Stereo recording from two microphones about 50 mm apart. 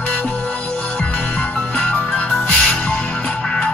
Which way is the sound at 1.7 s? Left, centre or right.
Left.